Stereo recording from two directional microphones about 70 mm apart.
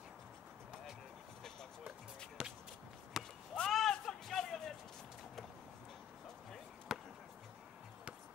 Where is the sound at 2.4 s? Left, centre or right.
Centre.